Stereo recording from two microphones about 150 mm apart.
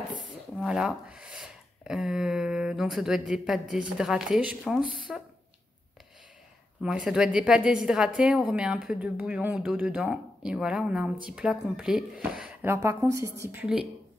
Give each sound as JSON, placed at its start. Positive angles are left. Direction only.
{"t": 0.2, "sound": "speech", "side_deg": -5}
{"t": 7.1, "sound": "speech", "side_deg": -5}
{"t": 12.7, "sound": "a woman's voice", "side_deg": -20}